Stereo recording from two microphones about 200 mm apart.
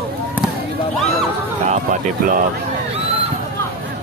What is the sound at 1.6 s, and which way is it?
Speech, 35° right (ahead or behind).